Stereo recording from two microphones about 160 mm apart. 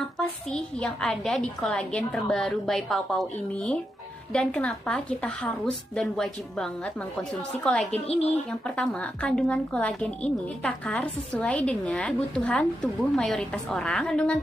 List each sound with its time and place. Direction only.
0.2 s a woman's voice: 5° left (ahead or behind)
8.1 s speech: 40° left (ahead or behind)
8.5 s a woman's voice: 5° left (ahead or behind)